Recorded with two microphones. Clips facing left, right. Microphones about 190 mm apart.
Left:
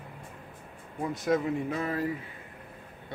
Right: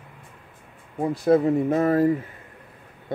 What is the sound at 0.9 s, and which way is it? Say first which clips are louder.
Speech: right 8 dB; 30° right (ahead or behind).